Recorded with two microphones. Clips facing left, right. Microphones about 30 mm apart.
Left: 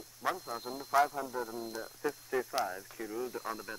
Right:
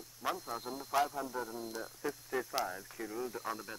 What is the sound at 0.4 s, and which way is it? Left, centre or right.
Speech, centre.